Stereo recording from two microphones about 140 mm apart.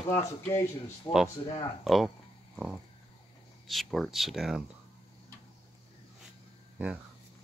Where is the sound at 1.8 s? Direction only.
Centre (ahead or behind).